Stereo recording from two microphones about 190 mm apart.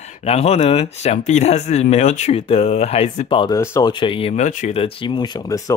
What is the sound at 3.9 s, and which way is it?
Speech, 30° left (ahead or behind).